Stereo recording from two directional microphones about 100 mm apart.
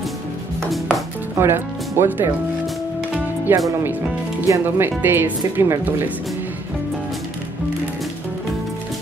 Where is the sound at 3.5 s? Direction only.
20° right (ahead or behind).